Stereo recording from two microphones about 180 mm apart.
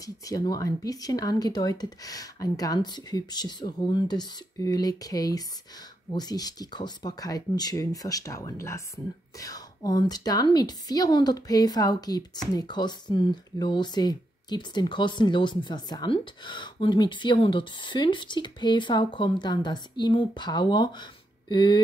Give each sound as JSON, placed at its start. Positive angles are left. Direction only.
{"t": 0.0, "sound": "speech", "side_deg": 20}